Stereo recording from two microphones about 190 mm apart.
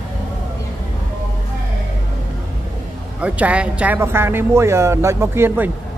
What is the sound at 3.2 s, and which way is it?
Speech, 5° right (ahead or behind).